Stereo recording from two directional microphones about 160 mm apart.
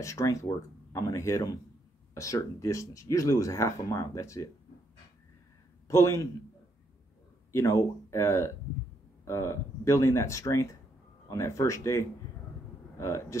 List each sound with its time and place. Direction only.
0.0 s speech: 20° left (ahead or behind)
5.9 s a man's voice: 20° left (ahead or behind)
7.5 s speech: 20° left (ahead or behind)